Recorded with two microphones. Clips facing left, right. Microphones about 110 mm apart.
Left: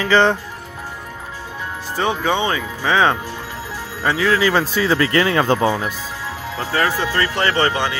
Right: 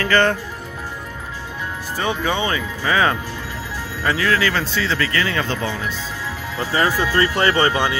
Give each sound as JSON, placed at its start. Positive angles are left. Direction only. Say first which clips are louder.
{"t": 0.0, "sound": "speech", "louder": "left 2 dB", "side_deg": 0}
{"t": 2.0, "sound": "speech", "louder": "left 3 dB", "side_deg": 10}
{"t": 4.9, "sound": "speech", "louder": "left 7 dB", "side_deg": 25}
{"t": 6.6, "sound": "speech", "louder": "even", "side_deg": -10}
{"t": 6.9, "sound": "speech", "louder": "right 1 dB", "side_deg": 20}
{"t": 7.2, "sound": "speech", "louder": "right 2 dB", "side_deg": -15}